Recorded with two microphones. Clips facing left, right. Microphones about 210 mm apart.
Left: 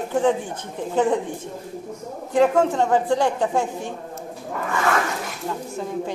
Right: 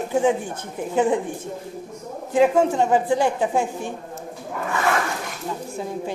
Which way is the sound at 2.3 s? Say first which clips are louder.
Even; 10° right (ahead or behind).